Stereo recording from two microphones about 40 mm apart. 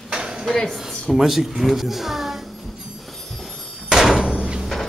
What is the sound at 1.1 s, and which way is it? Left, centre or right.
A child's voice, centre.